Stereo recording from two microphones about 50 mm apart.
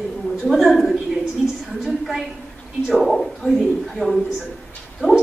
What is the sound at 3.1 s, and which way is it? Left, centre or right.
A man's voice, centre.